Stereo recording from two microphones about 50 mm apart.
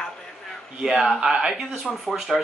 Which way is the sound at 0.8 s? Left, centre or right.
Centre.